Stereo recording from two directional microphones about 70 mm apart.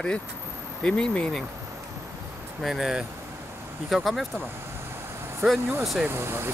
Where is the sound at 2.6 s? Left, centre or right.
Centre.